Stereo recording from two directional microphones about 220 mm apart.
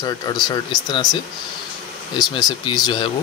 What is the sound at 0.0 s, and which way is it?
Speech, 20° left (ahead or behind).